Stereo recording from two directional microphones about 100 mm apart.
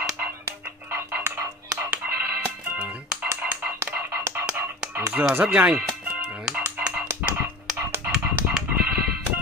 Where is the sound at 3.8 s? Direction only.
25° right (ahead or behind).